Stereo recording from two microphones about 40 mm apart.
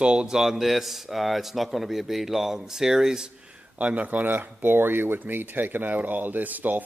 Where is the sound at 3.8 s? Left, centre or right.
Right.